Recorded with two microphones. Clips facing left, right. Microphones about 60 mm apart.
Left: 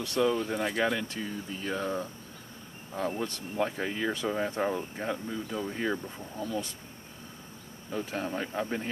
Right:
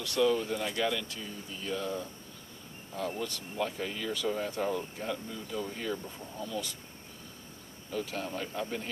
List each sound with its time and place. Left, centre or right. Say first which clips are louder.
0.0 s speech: even; left
7.9 s speech: left 2 dB; left